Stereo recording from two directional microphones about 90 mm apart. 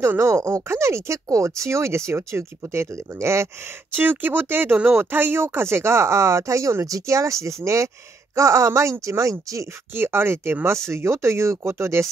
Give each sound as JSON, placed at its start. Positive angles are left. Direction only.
{"t": 0.1, "sound": "speech", "side_deg": -35}
{"t": 9.9, "sound": "speech", "side_deg": -25}